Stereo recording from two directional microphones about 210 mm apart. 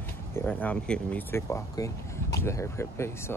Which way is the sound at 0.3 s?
10° left (ahead or behind).